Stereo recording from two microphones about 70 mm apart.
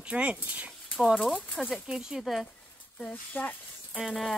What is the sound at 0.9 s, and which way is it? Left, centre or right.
Speech, centre.